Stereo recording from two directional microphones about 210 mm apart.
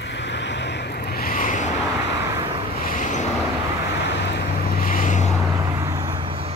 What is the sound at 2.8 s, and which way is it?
Vehicle, 35° left (ahead or behind).